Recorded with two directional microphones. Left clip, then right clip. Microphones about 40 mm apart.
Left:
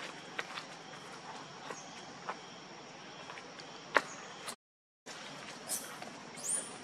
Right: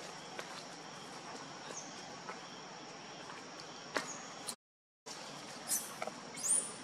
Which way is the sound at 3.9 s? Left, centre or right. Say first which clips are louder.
Left 9 dB; left.